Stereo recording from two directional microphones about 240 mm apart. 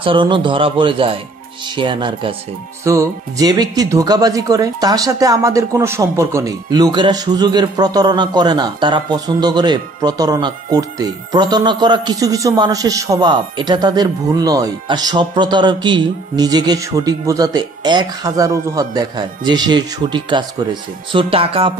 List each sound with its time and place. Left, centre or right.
0.0 s speech: right